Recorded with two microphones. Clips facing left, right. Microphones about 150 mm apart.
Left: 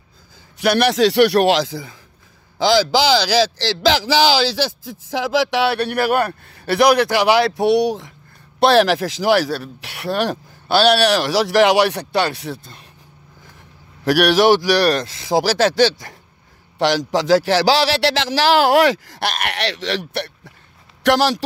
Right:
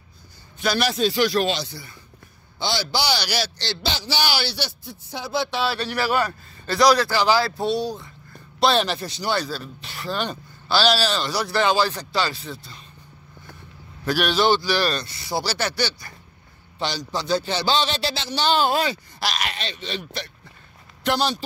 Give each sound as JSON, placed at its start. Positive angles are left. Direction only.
{"t": 0.6, "sound": "a man's voice", "side_deg": 65}
{"t": 8.5, "sound": "speech", "side_deg": 70}
{"t": 14.0, "sound": "a man's voice", "side_deg": 80}
{"t": 21.0, "sound": "speech", "side_deg": 85}